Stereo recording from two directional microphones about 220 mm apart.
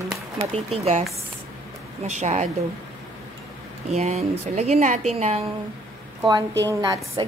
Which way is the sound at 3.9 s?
30° right (ahead or behind).